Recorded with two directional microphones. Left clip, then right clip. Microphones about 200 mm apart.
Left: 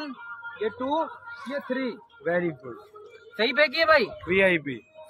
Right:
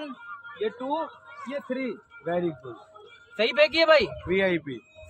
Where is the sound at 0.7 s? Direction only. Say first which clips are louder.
Left 3 dB; 20° left (ahead or behind).